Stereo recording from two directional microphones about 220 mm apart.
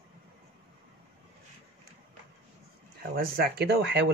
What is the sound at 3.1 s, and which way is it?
Speech, 45° right (ahead or behind).